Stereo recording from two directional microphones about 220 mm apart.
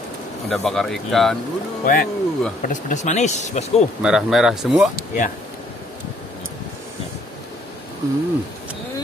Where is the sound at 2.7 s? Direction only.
35° left (ahead or behind).